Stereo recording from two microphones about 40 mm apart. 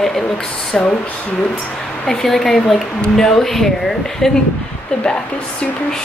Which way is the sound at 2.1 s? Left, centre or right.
Centre.